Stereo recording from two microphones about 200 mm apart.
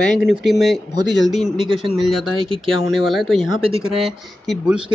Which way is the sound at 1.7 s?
25° right (ahead or behind).